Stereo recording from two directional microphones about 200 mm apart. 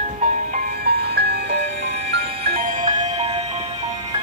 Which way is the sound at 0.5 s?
50° right (ahead or behind).